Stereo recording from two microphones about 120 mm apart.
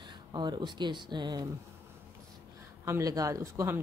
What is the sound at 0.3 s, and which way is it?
Speech, 40° right (ahead or behind).